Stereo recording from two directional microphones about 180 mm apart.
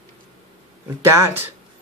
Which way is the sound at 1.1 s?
15° right (ahead or behind).